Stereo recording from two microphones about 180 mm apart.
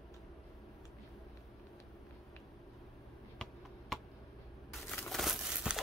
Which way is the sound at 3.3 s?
Centre (ahead or behind).